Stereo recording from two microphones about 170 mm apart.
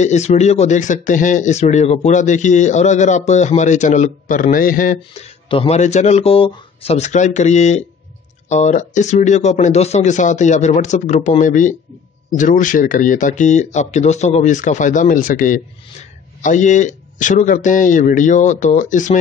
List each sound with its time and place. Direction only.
0.0 s speech: 40° left (ahead or behind)
5.2 s speech: 35° left (ahead or behind)